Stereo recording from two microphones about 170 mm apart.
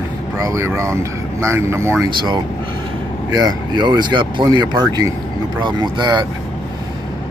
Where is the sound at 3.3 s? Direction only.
20° right (ahead or behind).